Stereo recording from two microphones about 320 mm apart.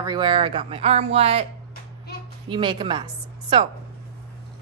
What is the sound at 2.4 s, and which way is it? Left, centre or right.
A woman's voice, centre.